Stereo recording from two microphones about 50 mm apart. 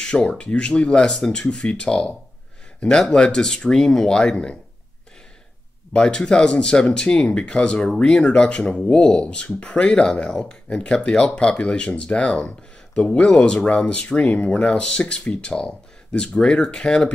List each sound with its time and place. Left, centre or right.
0.0 s speech: centre
1.1 s speech: centre
1.4 s speech: centre
5.9 s speech: centre